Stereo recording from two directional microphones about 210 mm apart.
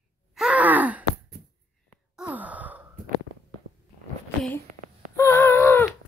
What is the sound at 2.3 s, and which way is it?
Sigh, 5° right (ahead or behind).